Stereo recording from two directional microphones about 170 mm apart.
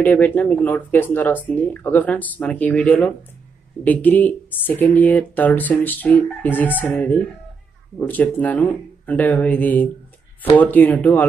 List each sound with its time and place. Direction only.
0.0 s speech: 10° left (ahead or behind)